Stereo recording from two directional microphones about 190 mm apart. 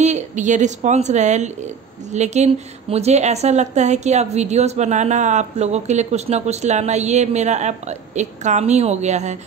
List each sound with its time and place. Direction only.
0.0 s a woman's voice: 40° right (ahead or behind)